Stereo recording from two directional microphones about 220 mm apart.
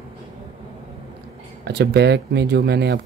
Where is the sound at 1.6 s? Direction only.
50° right (ahead or behind).